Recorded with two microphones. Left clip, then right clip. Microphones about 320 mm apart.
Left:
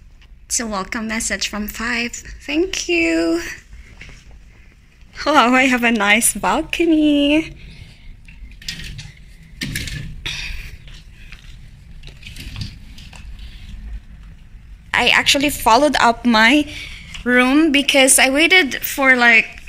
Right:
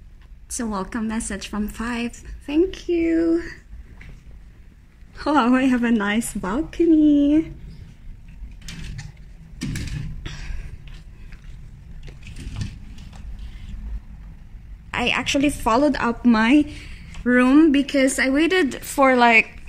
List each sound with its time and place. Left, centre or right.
0.5 s a woman's voice: centre
2.9 s a sound: left
3.3 s a woman's voice: centre
5.1 s a woman's voice: centre
14.9 s a woman's voice: centre